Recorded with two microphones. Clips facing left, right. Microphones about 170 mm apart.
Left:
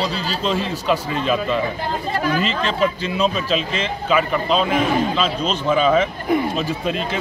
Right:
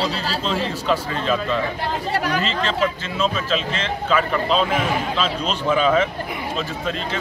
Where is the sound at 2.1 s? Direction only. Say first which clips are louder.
Left 2 dB; 75° right (ahead or behind).